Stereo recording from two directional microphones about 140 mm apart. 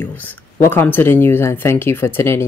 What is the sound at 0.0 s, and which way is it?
Speech, 15° left (ahead or behind).